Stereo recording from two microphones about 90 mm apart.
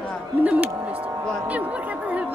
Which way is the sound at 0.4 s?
15° right (ahead or behind).